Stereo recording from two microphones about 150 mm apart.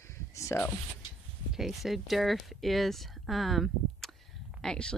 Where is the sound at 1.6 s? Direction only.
Centre (ahead or behind).